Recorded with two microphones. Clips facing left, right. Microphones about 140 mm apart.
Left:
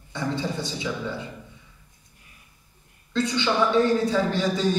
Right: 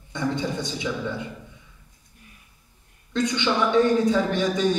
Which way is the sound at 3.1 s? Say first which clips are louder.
Even; 20° right (ahead or behind).